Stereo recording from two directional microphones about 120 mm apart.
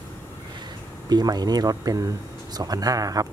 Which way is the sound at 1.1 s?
35° right (ahead or behind).